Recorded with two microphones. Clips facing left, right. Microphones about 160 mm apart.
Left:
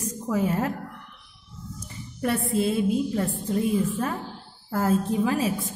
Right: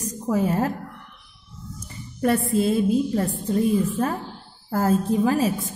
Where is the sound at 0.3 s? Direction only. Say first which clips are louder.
Right 3 dB; 35° right (ahead or behind).